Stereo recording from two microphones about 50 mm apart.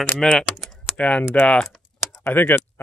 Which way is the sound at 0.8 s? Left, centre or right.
Left.